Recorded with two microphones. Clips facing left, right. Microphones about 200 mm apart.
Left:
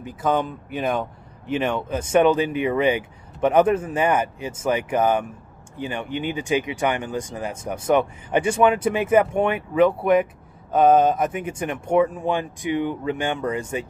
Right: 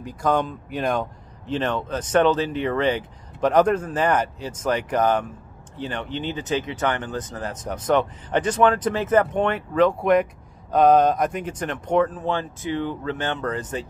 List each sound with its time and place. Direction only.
0.0 s speech: 5° left (ahead or behind)